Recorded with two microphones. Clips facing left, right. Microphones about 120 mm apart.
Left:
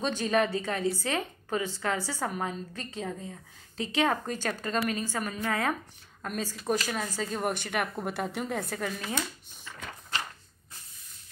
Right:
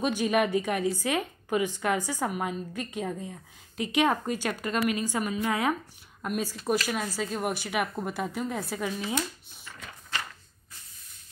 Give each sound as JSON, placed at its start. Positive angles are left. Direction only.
{"t": 0.0, "sound": "a woman's voice", "side_deg": -15}